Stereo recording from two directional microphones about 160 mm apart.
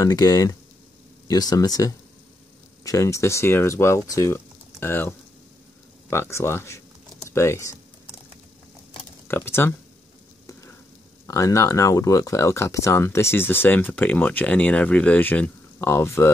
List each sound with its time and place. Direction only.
0.0 s speech: 25° left (ahead or behind)
9.3 s speech: 15° left (ahead or behind)
11.2 s speech: 20° left (ahead or behind)